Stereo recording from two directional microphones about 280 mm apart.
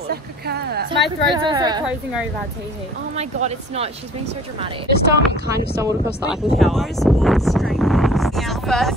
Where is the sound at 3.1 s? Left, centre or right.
Right.